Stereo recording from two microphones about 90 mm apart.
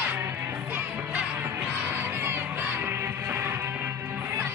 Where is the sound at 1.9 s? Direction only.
25° right (ahead or behind).